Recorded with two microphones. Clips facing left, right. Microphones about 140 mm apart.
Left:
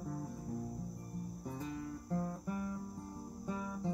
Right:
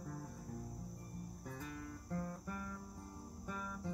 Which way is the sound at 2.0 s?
20° left (ahead or behind).